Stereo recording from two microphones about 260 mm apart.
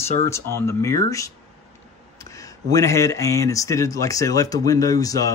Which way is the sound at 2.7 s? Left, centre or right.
Centre.